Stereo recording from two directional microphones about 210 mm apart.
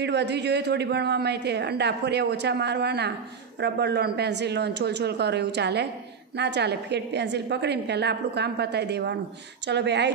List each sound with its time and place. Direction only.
0.0 s a woman's voice: 55° right (ahead or behind)